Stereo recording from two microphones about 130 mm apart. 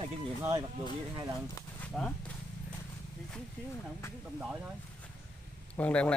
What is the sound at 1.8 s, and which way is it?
Speech, 5° left (ahead or behind).